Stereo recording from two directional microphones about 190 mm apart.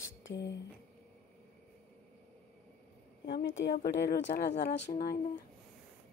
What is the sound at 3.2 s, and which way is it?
Speech, 70° left (ahead or behind).